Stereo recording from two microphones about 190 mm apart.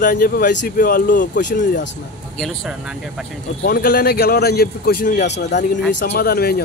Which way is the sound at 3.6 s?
50° left (ahead or behind).